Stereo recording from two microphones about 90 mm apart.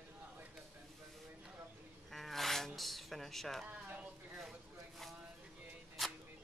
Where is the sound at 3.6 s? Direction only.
20° right (ahead or behind).